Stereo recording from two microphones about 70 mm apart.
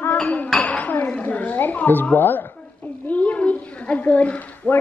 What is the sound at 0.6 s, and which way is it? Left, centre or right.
Dishes, left.